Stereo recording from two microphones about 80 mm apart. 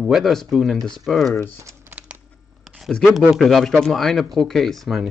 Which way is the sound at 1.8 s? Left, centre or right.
Centre.